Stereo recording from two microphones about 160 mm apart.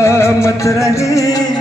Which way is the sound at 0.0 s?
15° left (ahead or behind).